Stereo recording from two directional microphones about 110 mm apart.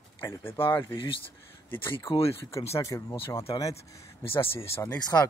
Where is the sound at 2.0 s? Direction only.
60° left (ahead or behind).